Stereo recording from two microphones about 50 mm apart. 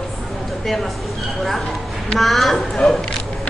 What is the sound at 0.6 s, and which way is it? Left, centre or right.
A man's voice, centre.